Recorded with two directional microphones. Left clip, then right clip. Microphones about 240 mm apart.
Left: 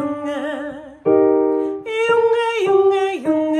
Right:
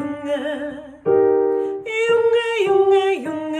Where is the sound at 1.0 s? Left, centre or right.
Left.